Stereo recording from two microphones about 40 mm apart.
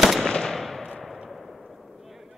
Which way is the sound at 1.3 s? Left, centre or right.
Centre.